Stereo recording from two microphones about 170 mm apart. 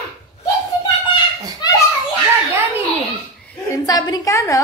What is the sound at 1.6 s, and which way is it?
Children playing, 25° left (ahead or behind).